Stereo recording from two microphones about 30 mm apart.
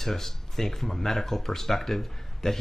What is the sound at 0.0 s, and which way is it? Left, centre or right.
Speech, centre.